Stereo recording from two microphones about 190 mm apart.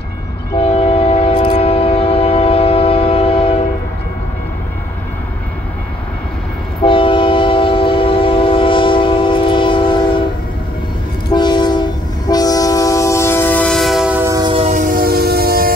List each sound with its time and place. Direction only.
0.6 s train: 30° left (ahead or behind)
6.8 s train: 30° left (ahead or behind)
11.3 s train: 25° left (ahead or behind); by 14.5 s 15° right (ahead or behind)
14.7 s train: 45° right (ahead or behind)